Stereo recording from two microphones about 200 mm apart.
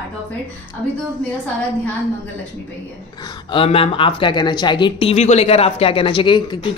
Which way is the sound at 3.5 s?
25° left (ahead or behind).